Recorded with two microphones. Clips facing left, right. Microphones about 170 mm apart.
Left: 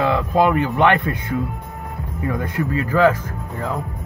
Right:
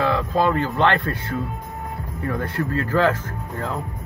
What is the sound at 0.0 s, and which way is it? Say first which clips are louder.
Speech: left 3 dB; 20° left (ahead or behind).